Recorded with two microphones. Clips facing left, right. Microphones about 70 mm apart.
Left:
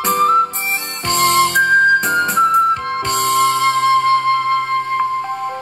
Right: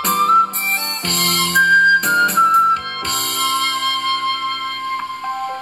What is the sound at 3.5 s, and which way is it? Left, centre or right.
Flute, centre.